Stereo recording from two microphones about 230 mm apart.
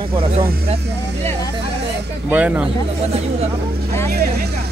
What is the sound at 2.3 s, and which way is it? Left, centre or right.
Speech, centre.